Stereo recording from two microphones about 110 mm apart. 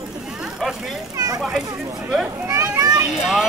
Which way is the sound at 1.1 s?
30° right (ahead or behind).